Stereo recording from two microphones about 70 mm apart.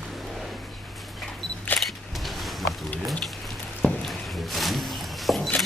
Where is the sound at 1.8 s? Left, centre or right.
Centre.